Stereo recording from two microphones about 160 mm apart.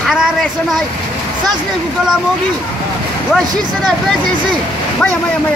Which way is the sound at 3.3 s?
Centre (ahead or behind).